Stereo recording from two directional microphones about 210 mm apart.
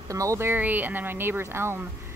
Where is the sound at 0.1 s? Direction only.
15° right (ahead or behind).